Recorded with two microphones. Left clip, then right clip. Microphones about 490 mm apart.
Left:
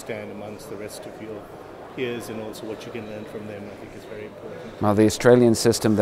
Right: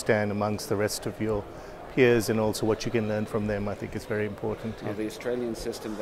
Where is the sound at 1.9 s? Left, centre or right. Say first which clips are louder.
Right 8 dB; right.